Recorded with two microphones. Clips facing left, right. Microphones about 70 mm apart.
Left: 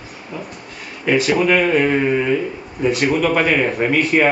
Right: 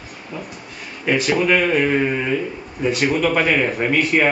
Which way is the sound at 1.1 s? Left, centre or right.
Centre.